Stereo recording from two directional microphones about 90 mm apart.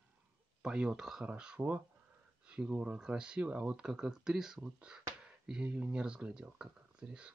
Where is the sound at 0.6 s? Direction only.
10° right (ahead or behind).